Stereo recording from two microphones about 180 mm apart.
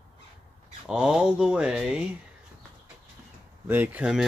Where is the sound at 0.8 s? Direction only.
5° right (ahead or behind).